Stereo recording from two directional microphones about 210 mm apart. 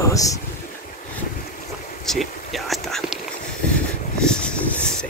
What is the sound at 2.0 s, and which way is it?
Whispering, centre (ahead or behind).